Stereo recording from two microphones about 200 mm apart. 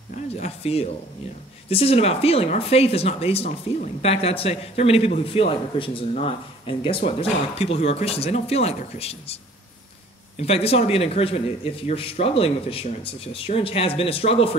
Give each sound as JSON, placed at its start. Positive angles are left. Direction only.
{"t": 0.4, "sound": "speech", "side_deg": 30}